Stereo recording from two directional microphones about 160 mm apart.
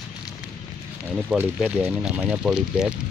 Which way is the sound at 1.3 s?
5° right (ahead or behind).